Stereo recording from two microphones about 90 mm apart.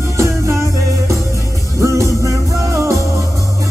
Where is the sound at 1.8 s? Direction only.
35° right (ahead or behind).